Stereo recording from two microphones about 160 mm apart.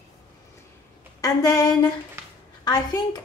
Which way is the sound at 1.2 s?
20° left (ahead or behind).